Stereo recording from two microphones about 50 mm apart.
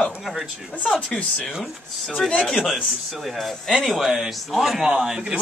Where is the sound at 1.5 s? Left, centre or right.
Centre.